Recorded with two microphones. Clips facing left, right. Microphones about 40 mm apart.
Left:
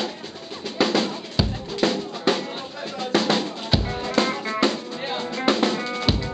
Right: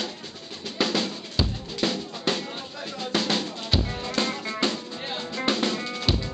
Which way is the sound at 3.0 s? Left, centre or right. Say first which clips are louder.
Left 5 dB; centre.